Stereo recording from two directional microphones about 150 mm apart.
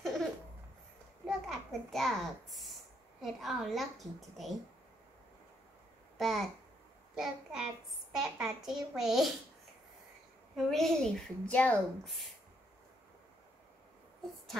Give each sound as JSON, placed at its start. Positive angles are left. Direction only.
{"t": 0.0, "sound": "a sound", "side_deg": 0}
{"t": 1.2, "sound": "a child's voice", "side_deg": 0}
{"t": 6.1, "sound": "a child's voice", "side_deg": 0}
{"t": 10.5, "sound": "a child's voice", "side_deg": 0}